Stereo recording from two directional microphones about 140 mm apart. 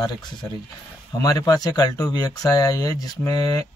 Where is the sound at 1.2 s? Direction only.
25° left (ahead or behind).